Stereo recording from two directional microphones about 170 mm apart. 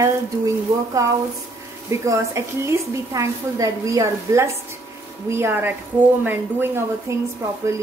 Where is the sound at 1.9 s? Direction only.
15° right (ahead or behind).